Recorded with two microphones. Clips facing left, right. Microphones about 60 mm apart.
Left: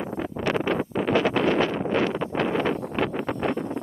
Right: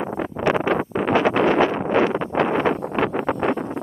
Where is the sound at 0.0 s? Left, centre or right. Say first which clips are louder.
Right 5 dB; right.